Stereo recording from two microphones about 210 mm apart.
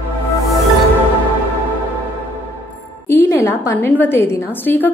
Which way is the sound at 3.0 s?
10° left (ahead or behind).